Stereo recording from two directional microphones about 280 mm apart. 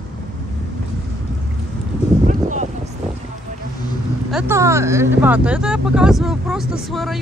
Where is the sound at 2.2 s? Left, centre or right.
Right.